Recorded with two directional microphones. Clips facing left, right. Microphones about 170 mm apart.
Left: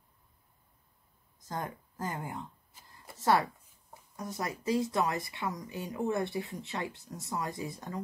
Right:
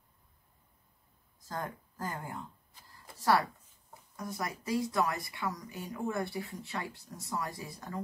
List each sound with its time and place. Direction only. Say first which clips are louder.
1.4 s speech: left 1 dB; 20° left (ahead or behind)